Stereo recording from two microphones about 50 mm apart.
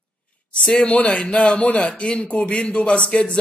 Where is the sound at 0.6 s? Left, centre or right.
Centre.